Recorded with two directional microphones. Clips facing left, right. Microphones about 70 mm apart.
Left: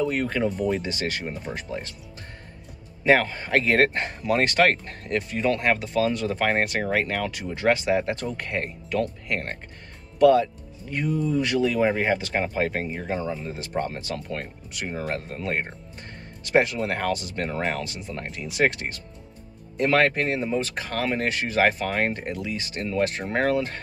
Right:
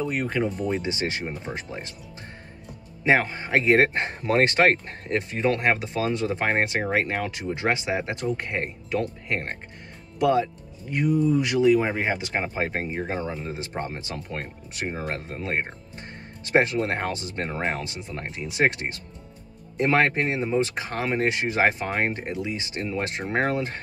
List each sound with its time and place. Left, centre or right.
0.0 s speech: centre
0.8 s speech: right
3.0 s speech: centre